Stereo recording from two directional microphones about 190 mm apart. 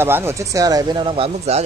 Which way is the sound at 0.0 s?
15° right (ahead or behind).